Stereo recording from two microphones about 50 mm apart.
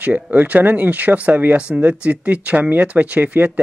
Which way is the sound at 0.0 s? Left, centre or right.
Right.